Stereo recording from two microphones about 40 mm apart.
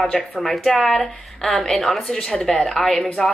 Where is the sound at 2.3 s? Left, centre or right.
Centre.